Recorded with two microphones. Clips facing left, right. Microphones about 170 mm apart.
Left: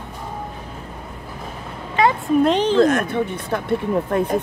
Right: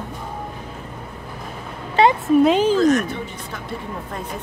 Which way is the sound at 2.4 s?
5° right (ahead or behind).